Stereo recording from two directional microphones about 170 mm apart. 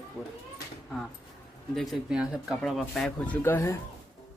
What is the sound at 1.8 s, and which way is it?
Speech, centre (ahead or behind).